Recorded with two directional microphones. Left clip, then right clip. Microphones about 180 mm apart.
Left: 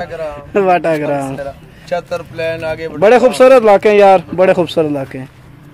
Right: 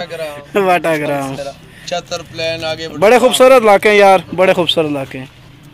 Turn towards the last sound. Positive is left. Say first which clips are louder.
# even
turn(degrees=5)  # may be behind; listen again after turning